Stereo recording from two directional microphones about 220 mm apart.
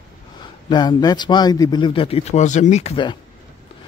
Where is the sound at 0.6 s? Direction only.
20° left (ahead or behind).